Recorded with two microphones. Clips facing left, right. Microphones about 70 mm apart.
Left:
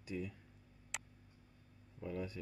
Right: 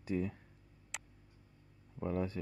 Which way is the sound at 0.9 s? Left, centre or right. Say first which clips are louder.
Even; centre.